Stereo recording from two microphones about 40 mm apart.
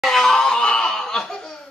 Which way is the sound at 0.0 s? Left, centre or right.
Centre.